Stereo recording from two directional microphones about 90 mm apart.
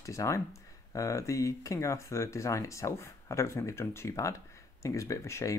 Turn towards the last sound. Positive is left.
turn(degrees=35)  # may be behind; listen again after turning